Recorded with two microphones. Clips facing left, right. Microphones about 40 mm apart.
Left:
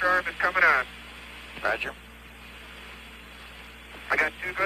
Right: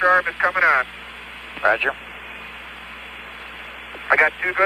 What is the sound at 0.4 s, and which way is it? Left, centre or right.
Speech, centre.